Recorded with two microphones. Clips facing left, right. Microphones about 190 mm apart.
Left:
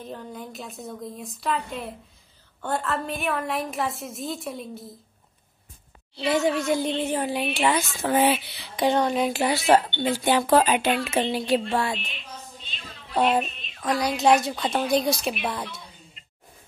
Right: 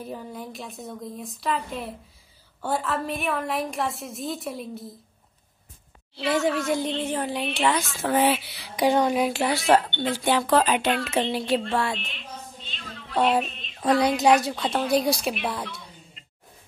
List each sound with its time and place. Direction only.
0.0 s speech: 5° right (ahead or behind)
6.7 s speech: 5° left (ahead or behind)
8.5 s speech: 10° right (ahead or behind)
9.3 s speech: centre (ahead or behind)
12.6 s a sound: 10° left (ahead or behind)
13.6 s a sound: 30° right (ahead or behind)
14.2 s speech: centre (ahead or behind)